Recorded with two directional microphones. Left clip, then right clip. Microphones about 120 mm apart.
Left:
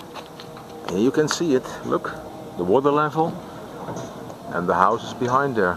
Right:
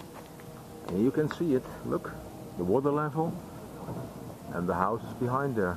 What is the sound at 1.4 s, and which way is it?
Speech, 35° left (ahead or behind).